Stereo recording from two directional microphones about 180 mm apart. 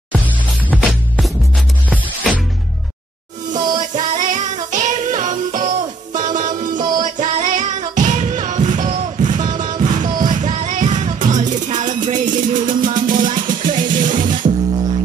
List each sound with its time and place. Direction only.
0.7 s music: 5° left (ahead or behind)
3.7 s music: 45° right (ahead or behind)
14.4 s music: 35° right (ahead or behind)